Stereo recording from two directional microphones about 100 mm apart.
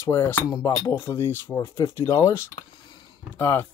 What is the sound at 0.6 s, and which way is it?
Speech, 40° left (ahead or behind).